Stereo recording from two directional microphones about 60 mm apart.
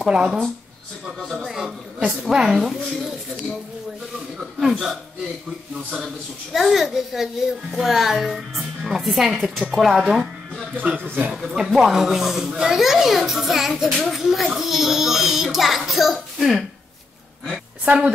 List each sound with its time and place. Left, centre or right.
0.0 s a woman's voice: centre
1.4 s a sound: centre
2.3 s a woman's voice: centre
4.6 s a child's voice: centre
6.5 s a child's voice: centre
11.1 s speech: right
11.3 s a child's voice: centre
17.8 s a woman's voice: centre